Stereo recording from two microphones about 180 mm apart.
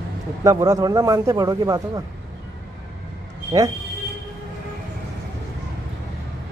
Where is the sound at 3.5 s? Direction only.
20° right (ahead or behind).